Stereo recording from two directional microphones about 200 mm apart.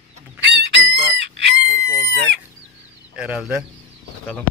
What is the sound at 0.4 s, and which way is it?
Chicken, 55° right (ahead or behind).